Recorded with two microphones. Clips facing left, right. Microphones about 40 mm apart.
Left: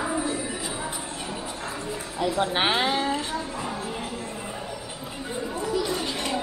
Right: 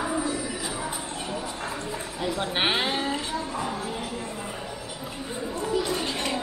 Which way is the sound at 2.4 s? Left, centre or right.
Centre.